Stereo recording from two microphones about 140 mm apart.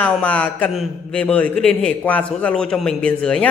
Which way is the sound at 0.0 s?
10° left (ahead or behind).